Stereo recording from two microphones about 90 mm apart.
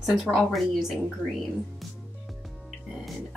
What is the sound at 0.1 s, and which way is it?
Speech, centre (ahead or behind).